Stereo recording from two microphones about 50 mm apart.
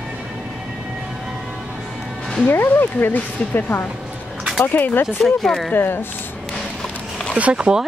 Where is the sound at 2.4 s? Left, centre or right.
Left.